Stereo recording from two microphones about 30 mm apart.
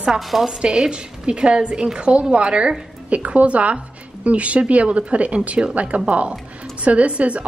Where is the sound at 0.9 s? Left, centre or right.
Right.